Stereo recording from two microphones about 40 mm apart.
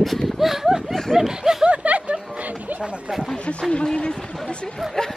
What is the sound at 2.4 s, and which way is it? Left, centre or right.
Bow-wow, right.